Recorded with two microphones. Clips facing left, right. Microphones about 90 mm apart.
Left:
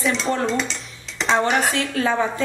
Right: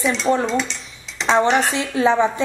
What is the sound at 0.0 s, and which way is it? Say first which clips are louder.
Speech: right 1 dB; centre (ahead or behind).